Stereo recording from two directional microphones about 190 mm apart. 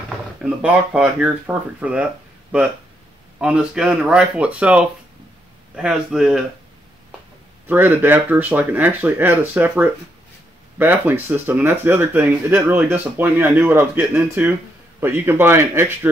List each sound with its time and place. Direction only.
0.4 s speech: 5° right (ahead or behind)
3.3 s speech: 5° right (ahead or behind)
7.6 s speech: 10° right (ahead or behind)